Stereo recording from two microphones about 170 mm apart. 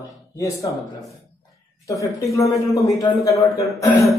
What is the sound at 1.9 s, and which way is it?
A man's voice, 20° left (ahead or behind).